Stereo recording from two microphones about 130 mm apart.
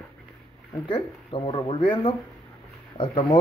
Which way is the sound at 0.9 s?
40° left (ahead or behind).